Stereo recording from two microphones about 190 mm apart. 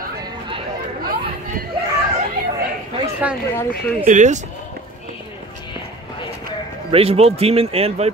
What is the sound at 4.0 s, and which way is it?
Speech, 40° right (ahead or behind).